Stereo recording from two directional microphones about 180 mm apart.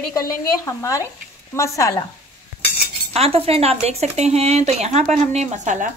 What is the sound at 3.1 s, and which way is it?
Speech, 35° right (ahead or behind).